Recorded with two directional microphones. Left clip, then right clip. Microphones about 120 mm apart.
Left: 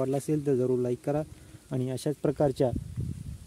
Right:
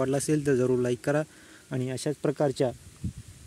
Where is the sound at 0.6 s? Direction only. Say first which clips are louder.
Right 2 dB; 20° right (ahead or behind).